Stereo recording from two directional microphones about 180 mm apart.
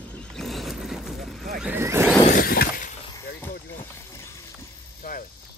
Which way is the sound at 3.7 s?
15° left (ahead or behind).